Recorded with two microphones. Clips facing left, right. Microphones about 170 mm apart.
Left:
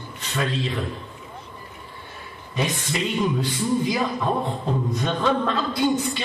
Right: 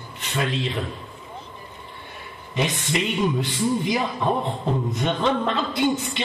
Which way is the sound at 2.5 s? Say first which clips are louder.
Right 1 dB; 20° right (ahead or behind).